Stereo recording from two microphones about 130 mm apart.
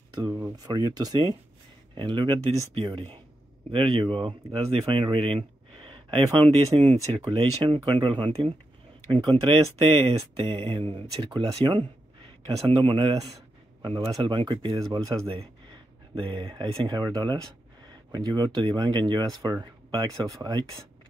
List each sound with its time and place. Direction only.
0.1 s speech: 25° right (ahead or behind)